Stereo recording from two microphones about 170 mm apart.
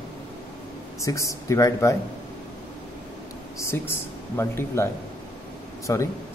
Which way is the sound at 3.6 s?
15° left (ahead or behind).